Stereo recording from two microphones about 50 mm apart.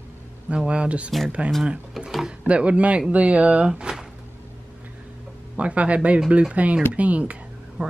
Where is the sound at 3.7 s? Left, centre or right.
Centre.